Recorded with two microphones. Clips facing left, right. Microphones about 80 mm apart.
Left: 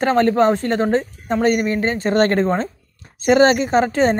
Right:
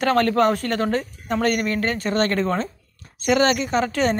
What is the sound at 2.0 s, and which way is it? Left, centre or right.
Speech, left.